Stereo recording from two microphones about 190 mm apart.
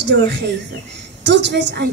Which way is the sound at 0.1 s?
65° right (ahead or behind).